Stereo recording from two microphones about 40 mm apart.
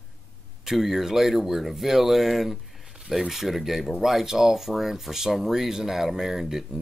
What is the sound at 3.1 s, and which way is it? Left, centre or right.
Speech, centre.